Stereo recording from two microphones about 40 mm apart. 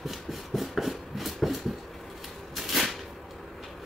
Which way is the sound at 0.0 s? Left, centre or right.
Centre.